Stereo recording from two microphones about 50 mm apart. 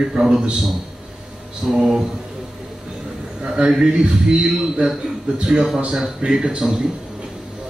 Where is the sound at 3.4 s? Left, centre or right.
Right.